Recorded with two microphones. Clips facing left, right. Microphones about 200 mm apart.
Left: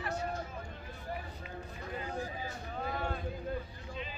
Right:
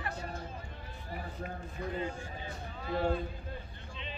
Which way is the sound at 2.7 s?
50° left (ahead or behind).